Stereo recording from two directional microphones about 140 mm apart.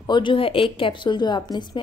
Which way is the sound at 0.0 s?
35° left (ahead or behind).